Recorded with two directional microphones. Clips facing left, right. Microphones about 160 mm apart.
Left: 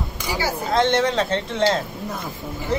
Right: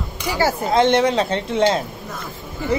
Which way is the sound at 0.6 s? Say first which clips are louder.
Right 3 dB; 15° right (ahead or behind).